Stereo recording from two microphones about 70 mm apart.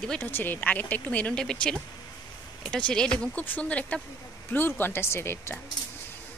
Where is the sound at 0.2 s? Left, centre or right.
Left.